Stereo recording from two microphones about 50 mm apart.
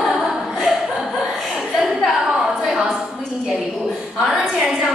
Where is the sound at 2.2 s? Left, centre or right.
Centre.